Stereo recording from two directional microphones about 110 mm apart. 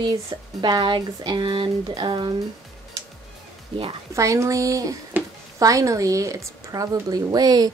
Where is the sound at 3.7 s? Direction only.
55° right (ahead or behind).